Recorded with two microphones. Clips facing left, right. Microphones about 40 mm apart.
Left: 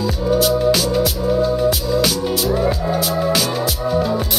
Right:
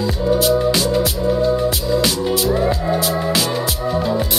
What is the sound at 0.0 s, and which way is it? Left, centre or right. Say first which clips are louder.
Music: even; centre.